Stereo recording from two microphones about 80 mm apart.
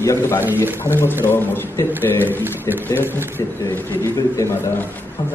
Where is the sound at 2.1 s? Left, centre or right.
Right.